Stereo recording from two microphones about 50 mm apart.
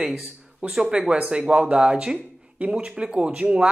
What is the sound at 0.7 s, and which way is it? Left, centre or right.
Speech, centre.